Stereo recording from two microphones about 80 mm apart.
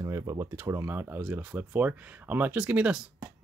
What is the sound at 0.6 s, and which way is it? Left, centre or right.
Speech, right.